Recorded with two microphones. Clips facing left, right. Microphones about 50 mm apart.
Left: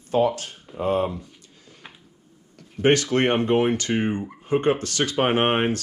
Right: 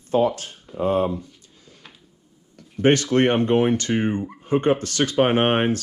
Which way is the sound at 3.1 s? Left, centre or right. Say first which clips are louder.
Right 2 dB; left.